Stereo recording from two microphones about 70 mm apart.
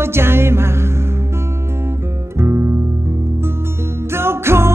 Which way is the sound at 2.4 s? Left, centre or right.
Right.